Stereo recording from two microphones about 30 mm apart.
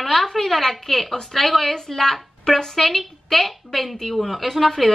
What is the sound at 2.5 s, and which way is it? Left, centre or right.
Speech, left.